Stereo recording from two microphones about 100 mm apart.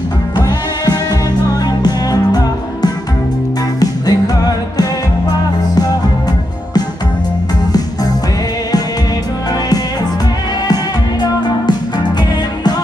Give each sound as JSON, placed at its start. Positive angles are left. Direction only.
{"t": 1.8, "sound": "music", "side_deg": 45}